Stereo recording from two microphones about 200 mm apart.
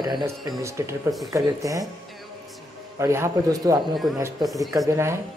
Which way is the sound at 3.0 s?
15° right (ahead or behind).